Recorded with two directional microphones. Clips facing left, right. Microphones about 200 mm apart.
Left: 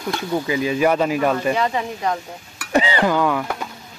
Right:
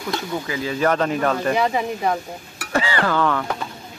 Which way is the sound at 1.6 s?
10° right (ahead or behind).